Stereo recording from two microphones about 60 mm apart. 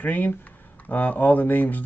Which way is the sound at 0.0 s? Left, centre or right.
Left.